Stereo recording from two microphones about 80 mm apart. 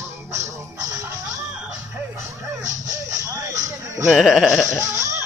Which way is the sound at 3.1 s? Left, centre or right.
Right.